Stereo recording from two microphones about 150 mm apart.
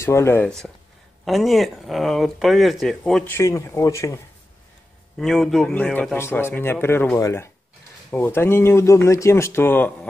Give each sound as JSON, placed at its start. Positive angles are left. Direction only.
{"t": 0.0, "sound": "speech", "side_deg": 20}
{"t": 3.3, "sound": "a man's voice", "side_deg": 20}
{"t": 5.2, "sound": "speech", "side_deg": 0}
{"t": 6.1, "sound": "speech", "side_deg": 15}